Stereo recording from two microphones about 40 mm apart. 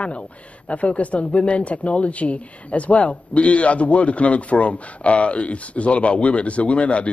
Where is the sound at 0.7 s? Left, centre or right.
Left.